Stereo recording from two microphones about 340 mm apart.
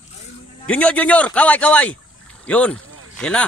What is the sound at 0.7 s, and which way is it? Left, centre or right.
Speech, centre.